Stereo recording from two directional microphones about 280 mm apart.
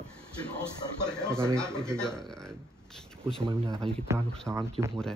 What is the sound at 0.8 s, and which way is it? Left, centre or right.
Speech, centre.